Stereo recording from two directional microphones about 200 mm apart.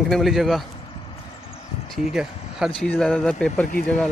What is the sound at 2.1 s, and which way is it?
Speech, 5° right (ahead or behind).